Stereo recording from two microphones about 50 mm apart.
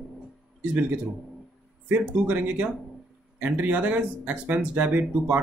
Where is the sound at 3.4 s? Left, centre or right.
Right.